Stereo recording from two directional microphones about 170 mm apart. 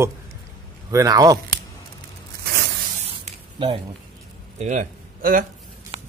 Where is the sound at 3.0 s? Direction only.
40° right (ahead or behind).